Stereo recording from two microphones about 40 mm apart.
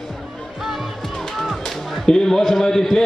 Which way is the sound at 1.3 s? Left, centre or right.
Centre.